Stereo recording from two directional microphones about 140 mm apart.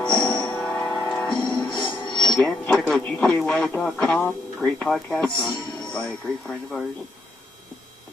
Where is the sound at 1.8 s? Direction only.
35° left (ahead or behind).